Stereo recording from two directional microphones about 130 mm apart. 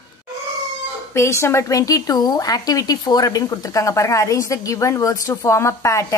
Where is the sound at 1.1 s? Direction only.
20° left (ahead or behind).